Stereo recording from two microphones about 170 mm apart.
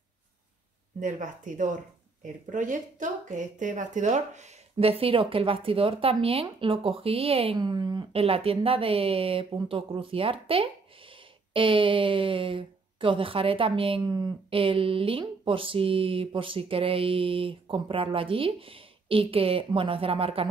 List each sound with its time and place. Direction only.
0.9 s speech: 50° right (ahead or behind); by 20.4 s 35° right (ahead or behind)